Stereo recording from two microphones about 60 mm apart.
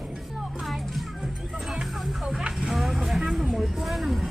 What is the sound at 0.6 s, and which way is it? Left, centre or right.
Music, centre.